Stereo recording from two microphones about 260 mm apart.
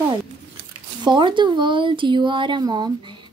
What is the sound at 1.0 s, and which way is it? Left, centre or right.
Speech, centre.